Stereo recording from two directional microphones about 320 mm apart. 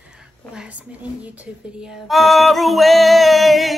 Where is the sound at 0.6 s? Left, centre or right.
Centre.